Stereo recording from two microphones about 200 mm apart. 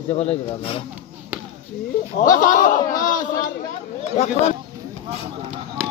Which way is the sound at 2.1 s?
40° left (ahead or behind).